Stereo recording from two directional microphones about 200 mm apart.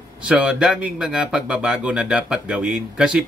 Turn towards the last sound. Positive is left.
turn(degrees=-5)  # may be behind; listen again after turning